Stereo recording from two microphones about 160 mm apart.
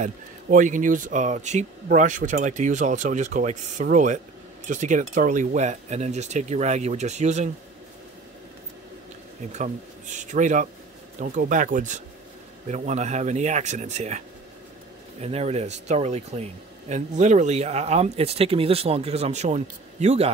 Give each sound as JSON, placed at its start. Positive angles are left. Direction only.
{"t": 0.0, "sound": "speech", "side_deg": -50}
{"t": 9.5, "sound": "speech", "side_deg": -50}
{"t": 15.2, "sound": "speech", "side_deg": -40}